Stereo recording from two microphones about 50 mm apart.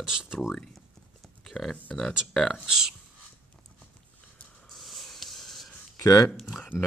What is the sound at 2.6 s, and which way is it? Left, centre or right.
Speech, centre.